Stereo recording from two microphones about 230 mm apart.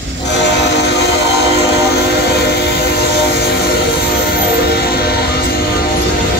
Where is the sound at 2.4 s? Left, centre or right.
Left.